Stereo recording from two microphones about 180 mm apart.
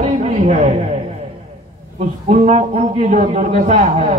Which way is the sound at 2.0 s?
40° right (ahead or behind).